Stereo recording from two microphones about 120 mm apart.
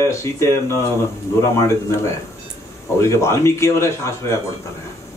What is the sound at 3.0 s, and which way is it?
A man's voice, 25° left (ahead or behind).